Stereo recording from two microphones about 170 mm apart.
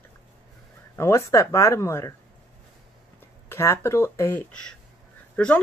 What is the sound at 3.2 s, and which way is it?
Speech, 15° left (ahead or behind).